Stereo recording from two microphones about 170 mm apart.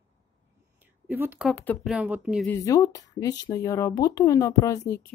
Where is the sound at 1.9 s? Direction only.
5° right (ahead or behind).